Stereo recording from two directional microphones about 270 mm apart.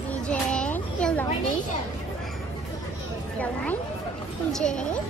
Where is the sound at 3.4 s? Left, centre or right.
Centre.